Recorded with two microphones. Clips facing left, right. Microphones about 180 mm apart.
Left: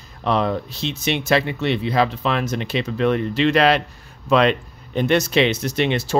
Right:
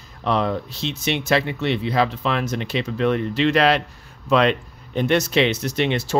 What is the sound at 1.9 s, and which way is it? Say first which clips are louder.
Speech: left 2 dB; 25° left (ahead or behind).